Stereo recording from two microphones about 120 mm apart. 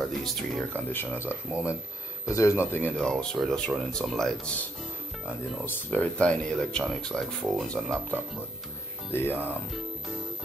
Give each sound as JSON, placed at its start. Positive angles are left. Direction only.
{"t": 0.0, "sound": "speech", "side_deg": 0}
{"t": 0.7, "sound": "speech", "side_deg": 15}
{"t": 3.0, "sound": "speech", "side_deg": 5}
{"t": 5.9, "sound": "speech", "side_deg": 10}
{"t": 9.1, "sound": "speech", "side_deg": 20}